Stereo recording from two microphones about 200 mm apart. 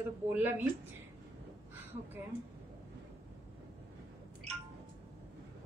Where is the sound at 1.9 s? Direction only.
25° right (ahead or behind).